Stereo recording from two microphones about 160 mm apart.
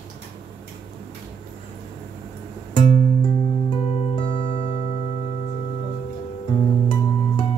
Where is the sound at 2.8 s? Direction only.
30° left (ahead or behind); by 5.2 s 45° left (ahead or behind).